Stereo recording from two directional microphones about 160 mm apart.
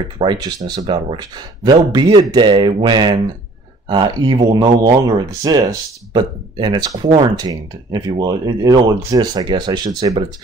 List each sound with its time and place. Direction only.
0.2 s speech: 25° right (ahead or behind)